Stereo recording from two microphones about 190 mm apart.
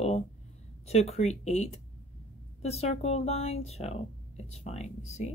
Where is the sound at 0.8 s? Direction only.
35° left (ahead or behind).